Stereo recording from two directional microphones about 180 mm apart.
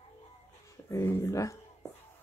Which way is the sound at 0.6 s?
20° left (ahead or behind).